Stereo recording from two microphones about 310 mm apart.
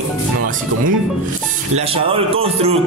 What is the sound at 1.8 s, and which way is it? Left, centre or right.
Speech, centre.